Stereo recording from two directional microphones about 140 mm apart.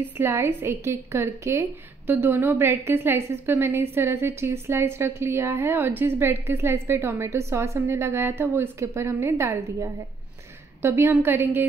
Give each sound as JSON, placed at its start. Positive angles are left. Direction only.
{"t": 0.0, "sound": "a woman's voice", "side_deg": -20}